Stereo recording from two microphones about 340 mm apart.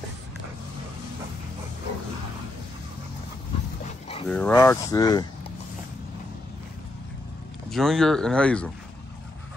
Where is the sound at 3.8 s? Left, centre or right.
Centre.